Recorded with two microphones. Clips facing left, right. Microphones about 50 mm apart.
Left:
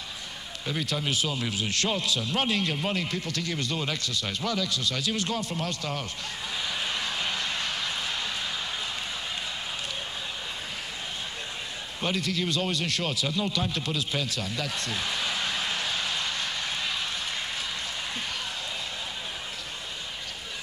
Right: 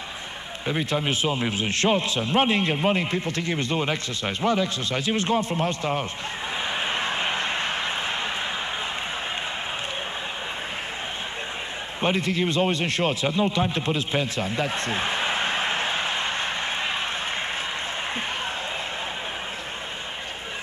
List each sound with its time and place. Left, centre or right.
0.7 s a man's voice: right
6.6 s vehicle: right
12.0 s speech: right